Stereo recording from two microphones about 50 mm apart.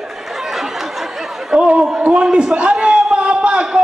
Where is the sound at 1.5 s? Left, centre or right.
Right.